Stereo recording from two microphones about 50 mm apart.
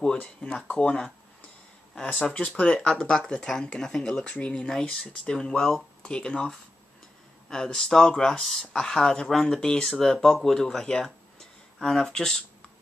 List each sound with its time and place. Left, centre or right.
0.0 s speech: centre
2.1 s speech: left
4.6 s speech: centre